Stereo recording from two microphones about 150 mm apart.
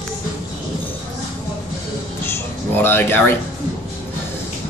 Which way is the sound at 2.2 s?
15° left (ahead or behind).